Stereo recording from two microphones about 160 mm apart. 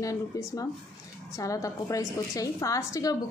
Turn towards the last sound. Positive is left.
turn(degrees=20)  # may be behind; listen again after turning